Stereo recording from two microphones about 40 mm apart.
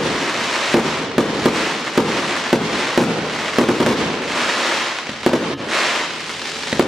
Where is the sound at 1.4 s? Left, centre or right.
Centre.